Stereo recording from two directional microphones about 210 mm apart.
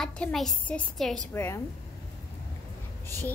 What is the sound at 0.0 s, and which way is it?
A child's voice, 5° left (ahead or behind).